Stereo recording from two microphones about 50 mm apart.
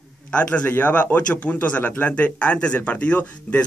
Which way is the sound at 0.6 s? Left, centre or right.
Left.